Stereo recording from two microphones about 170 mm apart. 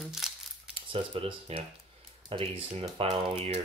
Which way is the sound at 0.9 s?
35° right (ahead or behind).